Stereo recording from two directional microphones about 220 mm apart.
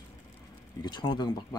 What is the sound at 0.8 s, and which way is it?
Speech, 20° left (ahead or behind).